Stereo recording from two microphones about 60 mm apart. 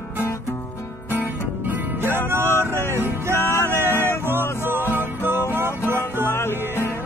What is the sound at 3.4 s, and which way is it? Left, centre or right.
Music, left.